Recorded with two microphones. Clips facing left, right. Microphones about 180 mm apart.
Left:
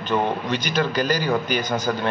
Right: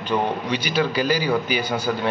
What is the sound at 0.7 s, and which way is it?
A man's voice, 10° right (ahead or behind).